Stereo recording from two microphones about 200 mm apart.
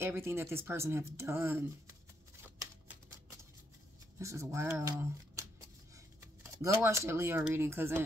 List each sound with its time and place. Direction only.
0.0 s speech: 10° right (ahead or behind)
4.2 s speech: 15° right (ahead or behind)
6.4 s speech: 15° right (ahead or behind)